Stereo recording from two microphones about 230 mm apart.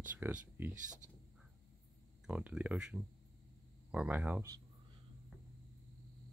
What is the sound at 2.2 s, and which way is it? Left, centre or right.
Speech, centre.